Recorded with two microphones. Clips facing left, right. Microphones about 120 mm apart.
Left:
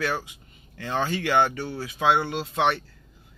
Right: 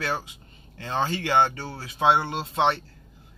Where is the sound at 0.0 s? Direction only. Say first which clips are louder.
Left 1 dB; 25° right (ahead or behind).